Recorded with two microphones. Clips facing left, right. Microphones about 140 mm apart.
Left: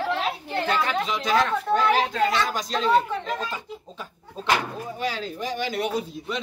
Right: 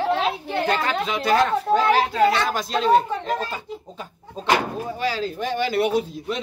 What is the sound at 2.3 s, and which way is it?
Speech, 50° right (ahead or behind).